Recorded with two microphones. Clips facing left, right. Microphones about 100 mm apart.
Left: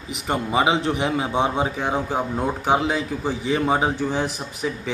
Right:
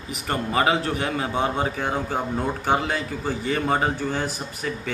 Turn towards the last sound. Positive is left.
turn(degrees=15)  # may be behind; listen again after turning